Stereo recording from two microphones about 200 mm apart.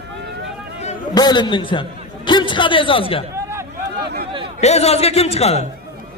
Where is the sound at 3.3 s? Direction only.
15° right (ahead or behind).